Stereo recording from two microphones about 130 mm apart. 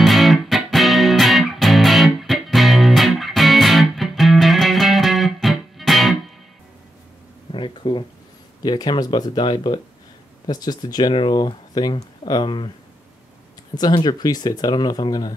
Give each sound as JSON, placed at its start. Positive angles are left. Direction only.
{"t": 0.0, "sound": "music", "side_deg": 0}
{"t": 7.5, "sound": "a sound", "side_deg": 35}
{"t": 8.6, "sound": "speech", "side_deg": 35}
{"t": 13.7, "sound": "speech", "side_deg": 35}